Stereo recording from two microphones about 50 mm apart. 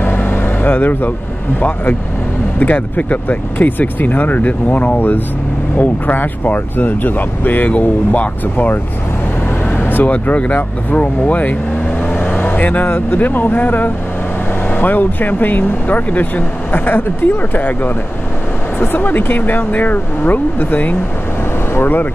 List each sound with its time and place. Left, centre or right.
0.0 s vehicle: left
2.6 s speech: left
9.8 s vehicle: left
10.1 s speech: left
12.1 s vehicle: left
13.2 s speech: left